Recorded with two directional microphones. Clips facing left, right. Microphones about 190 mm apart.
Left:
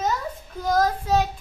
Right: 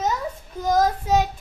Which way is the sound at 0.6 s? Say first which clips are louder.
Right 2 dB; 15° right (ahead or behind).